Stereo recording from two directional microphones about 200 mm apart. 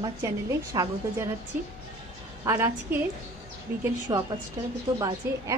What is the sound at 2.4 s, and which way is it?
Speech, 10° right (ahead or behind).